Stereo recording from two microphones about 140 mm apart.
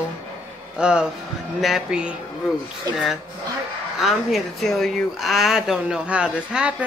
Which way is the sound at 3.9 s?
Centre (ahead or behind).